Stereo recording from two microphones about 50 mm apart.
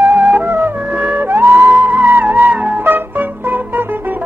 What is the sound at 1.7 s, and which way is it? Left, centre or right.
Music, right.